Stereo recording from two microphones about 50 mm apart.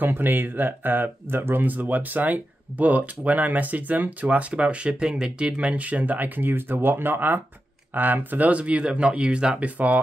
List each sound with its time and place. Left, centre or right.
0.0 s speech: right; by 9.7 s centre